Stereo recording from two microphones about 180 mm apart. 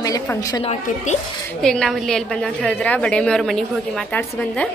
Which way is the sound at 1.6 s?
5° left (ahead or behind).